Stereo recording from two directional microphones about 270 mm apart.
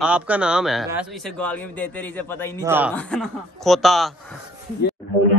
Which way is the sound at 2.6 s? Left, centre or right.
Centre.